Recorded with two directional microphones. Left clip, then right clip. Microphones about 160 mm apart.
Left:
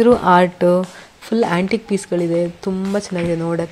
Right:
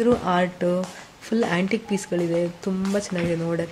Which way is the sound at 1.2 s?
25° left (ahead or behind).